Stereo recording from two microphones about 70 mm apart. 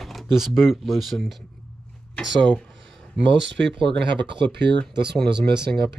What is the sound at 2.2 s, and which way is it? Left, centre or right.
Speech, centre.